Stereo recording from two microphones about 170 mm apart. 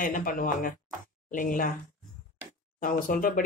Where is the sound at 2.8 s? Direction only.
55° left (ahead or behind).